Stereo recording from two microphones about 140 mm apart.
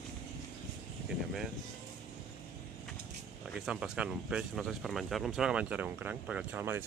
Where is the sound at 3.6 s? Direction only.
5° right (ahead or behind).